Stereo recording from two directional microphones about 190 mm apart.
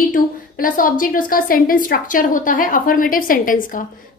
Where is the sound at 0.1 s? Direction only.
45° left (ahead or behind).